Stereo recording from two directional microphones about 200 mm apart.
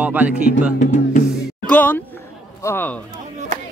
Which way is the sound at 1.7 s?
10° left (ahead or behind).